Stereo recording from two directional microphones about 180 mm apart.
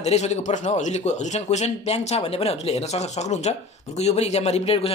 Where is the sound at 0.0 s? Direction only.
40° left (ahead or behind).